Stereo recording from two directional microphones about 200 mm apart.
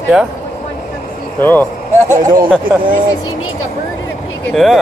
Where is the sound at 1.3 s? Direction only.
10° left (ahead or behind).